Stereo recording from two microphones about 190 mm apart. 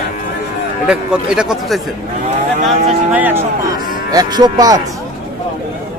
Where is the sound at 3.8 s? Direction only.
20° right (ahead or behind).